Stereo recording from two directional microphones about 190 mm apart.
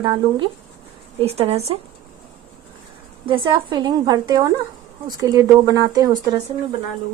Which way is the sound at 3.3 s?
25° right (ahead or behind).